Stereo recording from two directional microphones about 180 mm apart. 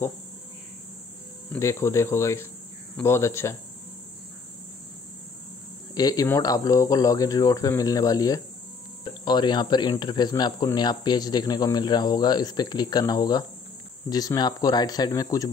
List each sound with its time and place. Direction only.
1.5 s speech: 15° left (ahead or behind)
5.9 s speech: 20° left (ahead or behind)